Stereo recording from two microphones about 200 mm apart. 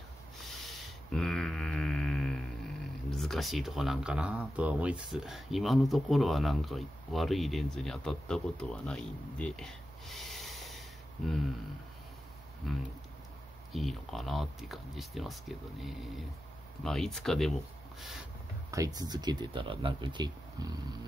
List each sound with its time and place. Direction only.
0.4 s a sound: centre (ahead or behind)
3.1 s speech: centre (ahead or behind)
12.6 s speech: centre (ahead or behind)
18.7 s speech: 15° right (ahead or behind)